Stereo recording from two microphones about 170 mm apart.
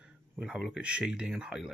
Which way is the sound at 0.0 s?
5° right (ahead or behind).